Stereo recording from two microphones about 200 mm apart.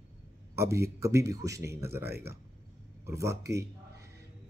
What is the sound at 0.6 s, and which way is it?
Speech, 15° right (ahead or behind).